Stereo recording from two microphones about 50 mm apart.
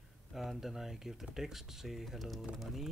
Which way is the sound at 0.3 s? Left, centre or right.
Centre.